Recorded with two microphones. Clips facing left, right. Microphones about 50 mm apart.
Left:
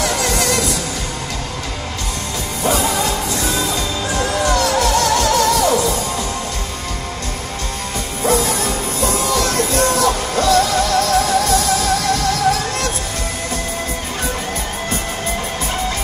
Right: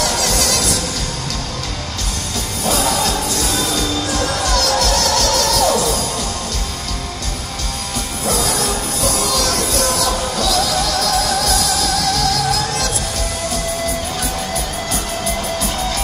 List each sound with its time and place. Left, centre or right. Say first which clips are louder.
0.0 s music: left 1 dB; centre
2.6 s music: even; centre
9.3 s music: left 2 dB; left